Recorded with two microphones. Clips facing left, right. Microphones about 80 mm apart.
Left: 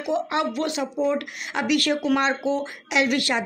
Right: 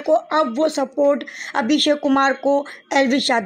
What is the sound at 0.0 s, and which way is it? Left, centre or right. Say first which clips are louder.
Speech: right 7 dB; right.